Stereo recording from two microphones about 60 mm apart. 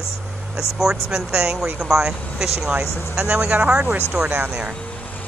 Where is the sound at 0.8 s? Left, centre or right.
Centre.